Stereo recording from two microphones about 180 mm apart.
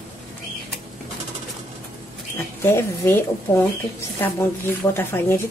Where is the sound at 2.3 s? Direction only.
15° left (ahead or behind).